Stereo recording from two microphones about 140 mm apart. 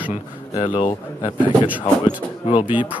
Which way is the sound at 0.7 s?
50° left (ahead or behind).